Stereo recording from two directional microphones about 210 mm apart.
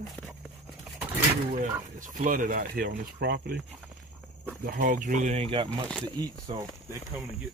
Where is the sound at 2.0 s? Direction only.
40° right (ahead or behind).